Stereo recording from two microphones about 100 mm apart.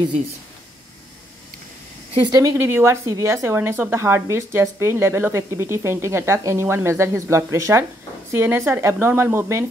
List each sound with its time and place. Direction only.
2.2 s speech: 40° right (ahead or behind)
2.5 s speech: 25° right (ahead or behind)